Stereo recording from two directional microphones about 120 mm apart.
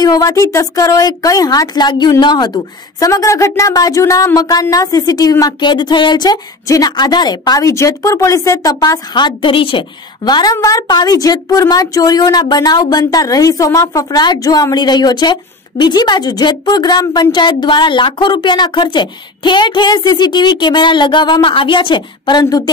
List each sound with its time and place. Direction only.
0.0 s speech: 30° left (ahead or behind)
3.1 s speech: 25° left (ahead or behind)